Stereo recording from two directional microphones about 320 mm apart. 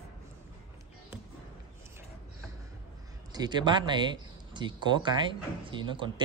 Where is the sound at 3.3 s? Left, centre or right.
Centre.